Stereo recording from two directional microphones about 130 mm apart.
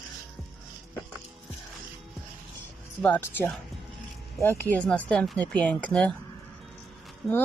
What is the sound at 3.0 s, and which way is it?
Speech, 15° left (ahead or behind).